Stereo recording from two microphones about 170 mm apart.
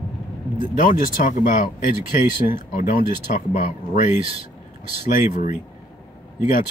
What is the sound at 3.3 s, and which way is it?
Speech, 45° left (ahead or behind).